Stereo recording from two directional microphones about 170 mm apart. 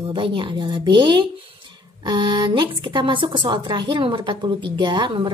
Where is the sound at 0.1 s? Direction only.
30° right (ahead or behind).